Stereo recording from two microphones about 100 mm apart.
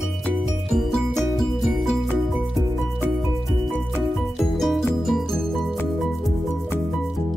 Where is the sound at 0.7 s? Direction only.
Centre (ahead or behind).